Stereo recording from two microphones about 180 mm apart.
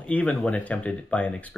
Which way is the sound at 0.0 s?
5° left (ahead or behind).